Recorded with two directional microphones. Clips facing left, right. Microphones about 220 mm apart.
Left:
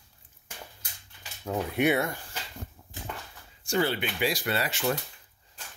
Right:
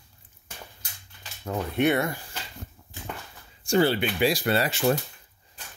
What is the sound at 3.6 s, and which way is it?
Speech, 30° right (ahead or behind).